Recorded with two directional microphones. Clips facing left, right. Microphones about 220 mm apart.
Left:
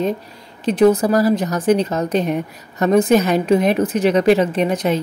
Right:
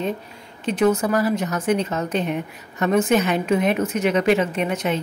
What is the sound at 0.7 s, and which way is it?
A woman's voice, 35° left (ahead or behind).